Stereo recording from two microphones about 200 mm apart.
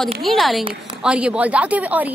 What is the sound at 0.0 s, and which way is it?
A woman's voice, centre (ahead or behind).